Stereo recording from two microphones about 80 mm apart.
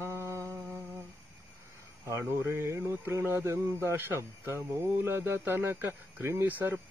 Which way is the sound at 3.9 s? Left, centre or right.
Right.